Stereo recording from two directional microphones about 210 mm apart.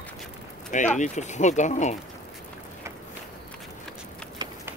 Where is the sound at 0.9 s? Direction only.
35° left (ahead or behind).